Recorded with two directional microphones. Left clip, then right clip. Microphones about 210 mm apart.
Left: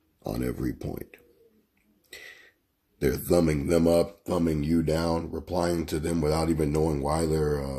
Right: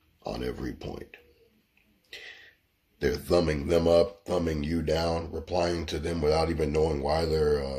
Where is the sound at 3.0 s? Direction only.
50° left (ahead or behind).